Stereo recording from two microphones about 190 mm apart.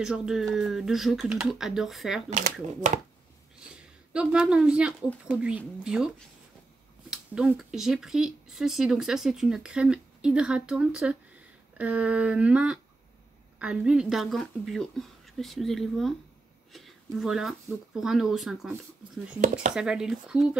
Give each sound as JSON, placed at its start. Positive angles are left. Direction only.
{"t": 0.0, "sound": "speech", "side_deg": -5}
{"t": 2.2, "sound": "speech", "side_deg": -40}
{"t": 4.1, "sound": "speech", "side_deg": -5}
{"t": 11.8, "sound": "a sound", "side_deg": -5}
{"t": 13.6, "sound": "speech", "side_deg": -5}